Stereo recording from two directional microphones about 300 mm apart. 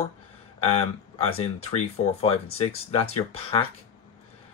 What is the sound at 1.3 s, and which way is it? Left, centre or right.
Speech, left.